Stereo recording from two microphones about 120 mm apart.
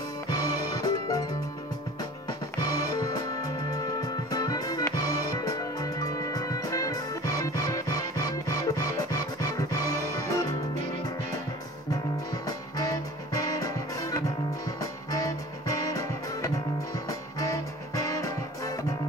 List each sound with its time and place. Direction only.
0.3 s music: 35° left (ahead or behind)
2.6 s music: 35° left (ahead or behind)
11.9 s music: 30° left (ahead or behind)